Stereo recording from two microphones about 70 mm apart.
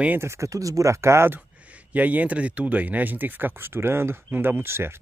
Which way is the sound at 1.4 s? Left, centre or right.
Centre.